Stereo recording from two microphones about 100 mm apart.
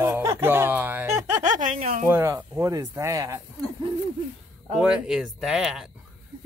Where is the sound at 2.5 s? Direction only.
35° right (ahead or behind).